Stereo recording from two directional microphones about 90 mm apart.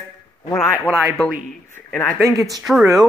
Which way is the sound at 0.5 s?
30° left (ahead or behind).